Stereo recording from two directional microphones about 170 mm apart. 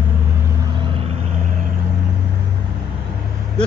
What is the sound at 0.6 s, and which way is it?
Vehicle, 30° right (ahead or behind).